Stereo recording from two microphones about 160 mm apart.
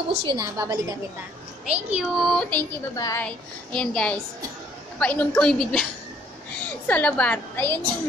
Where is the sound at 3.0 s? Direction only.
20° left (ahead or behind).